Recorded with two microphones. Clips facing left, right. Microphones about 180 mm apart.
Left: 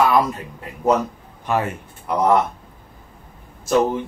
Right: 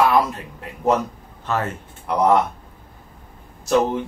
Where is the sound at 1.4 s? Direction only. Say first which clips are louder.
Left 2 dB; 15° left (ahead or behind).